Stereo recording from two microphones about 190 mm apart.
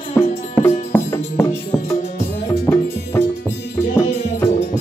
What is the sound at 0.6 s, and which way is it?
Music, 10° left (ahead or behind).